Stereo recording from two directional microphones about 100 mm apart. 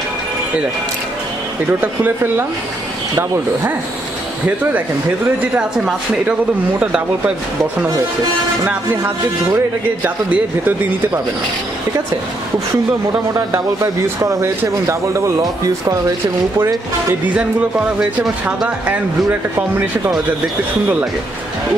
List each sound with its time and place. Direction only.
1.7 s speech: 20° right (ahead or behind)
5.4 s speech: 10° right (ahead or behind)
10.0 s speech: 15° right (ahead or behind)
14.2 s speech: 30° right (ahead or behind)
16.5 s speech: 20° right (ahead or behind); by 18.9 s 5° right (ahead or behind)